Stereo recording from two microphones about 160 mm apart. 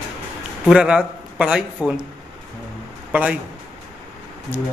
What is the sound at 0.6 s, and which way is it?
A man's voice, 5° right (ahead or behind).